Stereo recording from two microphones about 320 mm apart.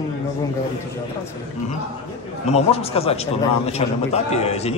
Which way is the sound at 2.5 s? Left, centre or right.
Centre.